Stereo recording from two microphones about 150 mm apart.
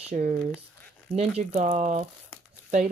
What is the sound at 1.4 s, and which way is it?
Speech, 45° right (ahead or behind).